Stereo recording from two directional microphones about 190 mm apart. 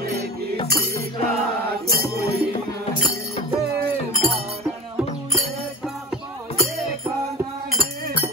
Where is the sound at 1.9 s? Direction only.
55° right (ahead or behind).